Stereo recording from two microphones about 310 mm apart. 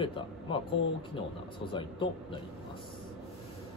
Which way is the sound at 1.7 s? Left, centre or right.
Centre.